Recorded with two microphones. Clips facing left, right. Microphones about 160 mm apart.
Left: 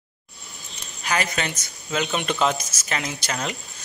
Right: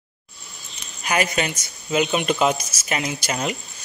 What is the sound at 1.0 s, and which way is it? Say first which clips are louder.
A man's voice: right 3 dB; 20° right (ahead or behind).